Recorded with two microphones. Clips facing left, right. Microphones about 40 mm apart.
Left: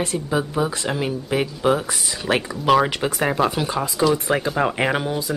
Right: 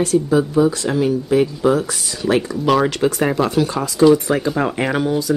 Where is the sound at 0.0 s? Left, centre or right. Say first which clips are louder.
Right 7 dB; left.